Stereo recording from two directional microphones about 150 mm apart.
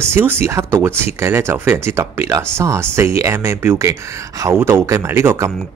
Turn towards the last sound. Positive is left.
turn(degrees=-20)  # may be behind; listen again after turning